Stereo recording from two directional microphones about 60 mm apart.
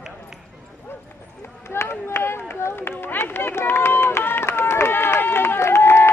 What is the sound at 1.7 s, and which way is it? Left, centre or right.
Run, left.